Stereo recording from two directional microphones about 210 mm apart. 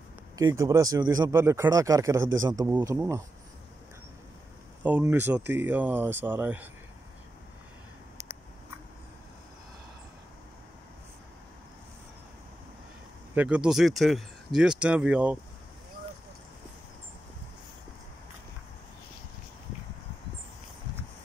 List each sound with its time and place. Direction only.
0.4 s speech: 15° right (ahead or behind)
4.8 s speech: 10° right (ahead or behind)
13.3 s speech: 5° right (ahead or behind)